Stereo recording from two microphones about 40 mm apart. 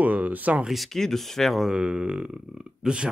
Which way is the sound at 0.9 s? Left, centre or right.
Centre.